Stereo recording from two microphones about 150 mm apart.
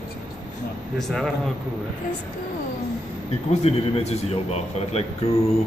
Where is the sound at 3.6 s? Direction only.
45° left (ahead or behind).